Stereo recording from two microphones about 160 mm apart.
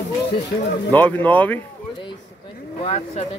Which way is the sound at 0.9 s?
10° left (ahead or behind).